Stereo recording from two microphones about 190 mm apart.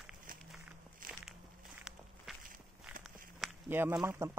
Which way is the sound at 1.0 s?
45° right (ahead or behind).